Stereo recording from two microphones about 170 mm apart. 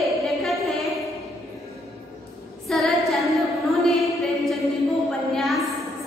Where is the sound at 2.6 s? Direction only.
Centre (ahead or behind).